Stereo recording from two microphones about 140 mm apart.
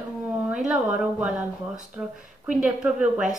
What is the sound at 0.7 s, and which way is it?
A woman's voice, 5° right (ahead or behind).